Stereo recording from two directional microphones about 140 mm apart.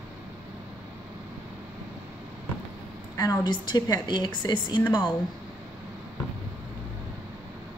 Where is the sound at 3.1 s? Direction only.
25° left (ahead or behind).